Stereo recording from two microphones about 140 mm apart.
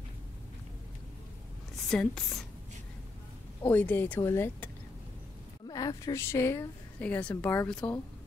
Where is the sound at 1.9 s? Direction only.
5° left (ahead or behind).